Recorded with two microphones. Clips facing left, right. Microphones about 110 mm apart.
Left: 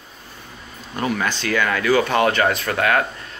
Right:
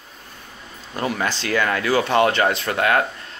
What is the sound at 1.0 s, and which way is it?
Speech, 30° right (ahead or behind).